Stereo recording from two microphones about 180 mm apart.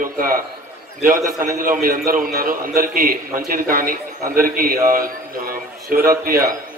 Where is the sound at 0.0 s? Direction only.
50° right (ahead or behind).